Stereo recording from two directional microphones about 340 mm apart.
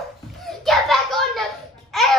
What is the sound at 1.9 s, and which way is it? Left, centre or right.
Babbling, centre.